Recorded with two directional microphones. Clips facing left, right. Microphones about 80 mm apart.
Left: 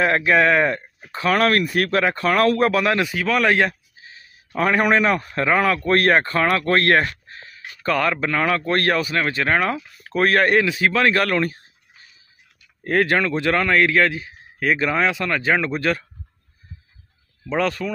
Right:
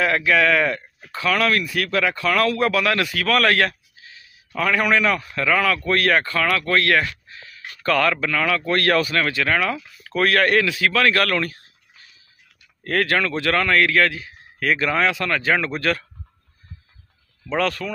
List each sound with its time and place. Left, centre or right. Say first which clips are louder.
0.0 s a man's voice: left 2 dB; left
7.6 s a man's voice: right 1 dB; centre
8.9 s a man's voice: right 1 dB; centre
17.5 s speech: left 1 dB; centre